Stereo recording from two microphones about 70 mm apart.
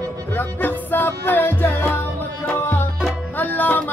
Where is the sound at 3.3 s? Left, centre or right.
Left.